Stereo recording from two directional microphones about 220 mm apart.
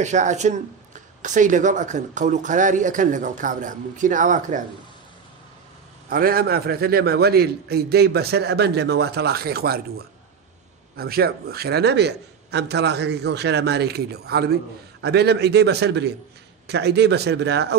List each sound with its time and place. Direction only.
0.0 s speech: 35° right (ahead or behind)
6.0 s a man's voice: 40° right (ahead or behind)